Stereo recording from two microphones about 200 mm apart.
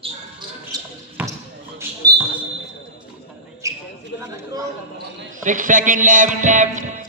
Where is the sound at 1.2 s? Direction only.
10° right (ahead or behind).